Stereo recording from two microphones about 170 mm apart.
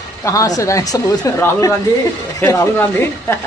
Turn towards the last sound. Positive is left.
turn(degrees=15)  # may be behind; listen again after turning